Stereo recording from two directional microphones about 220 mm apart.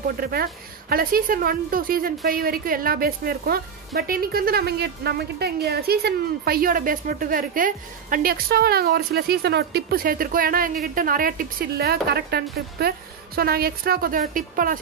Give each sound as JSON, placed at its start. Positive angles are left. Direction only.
{"t": 0.2, "sound": "a woman's voice", "side_deg": -45}